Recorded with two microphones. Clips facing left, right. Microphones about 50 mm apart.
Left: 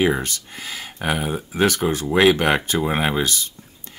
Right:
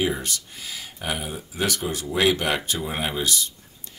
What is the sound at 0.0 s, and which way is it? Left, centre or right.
Speech, left.